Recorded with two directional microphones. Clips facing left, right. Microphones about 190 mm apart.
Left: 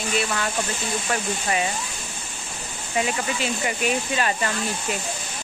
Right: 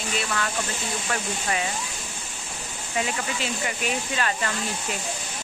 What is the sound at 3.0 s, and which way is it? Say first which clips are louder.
Speech: left 3 dB; 10° left (ahead or behind).